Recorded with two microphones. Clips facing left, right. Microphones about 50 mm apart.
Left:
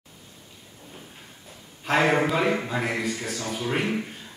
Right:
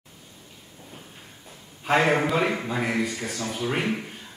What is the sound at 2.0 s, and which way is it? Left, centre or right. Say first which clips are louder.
Speech: left 2 dB; centre.